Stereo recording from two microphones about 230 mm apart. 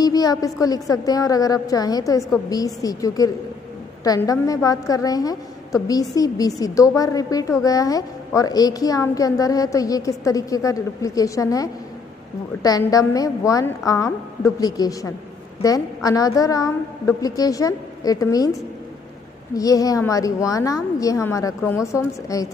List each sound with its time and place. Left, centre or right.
0.0 s a woman's voice: centre